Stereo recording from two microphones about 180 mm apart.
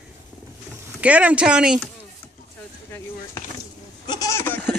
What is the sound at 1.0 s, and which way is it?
Speech, 5° right (ahead or behind).